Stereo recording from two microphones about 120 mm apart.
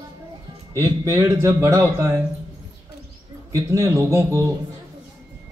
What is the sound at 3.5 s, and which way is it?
Speech, 25° right (ahead or behind).